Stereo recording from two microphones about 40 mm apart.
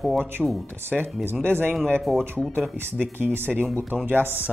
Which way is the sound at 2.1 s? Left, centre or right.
Centre.